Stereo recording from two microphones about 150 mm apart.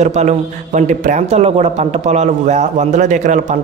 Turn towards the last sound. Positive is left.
turn(degrees=-55)  # may be behind; listen again after turning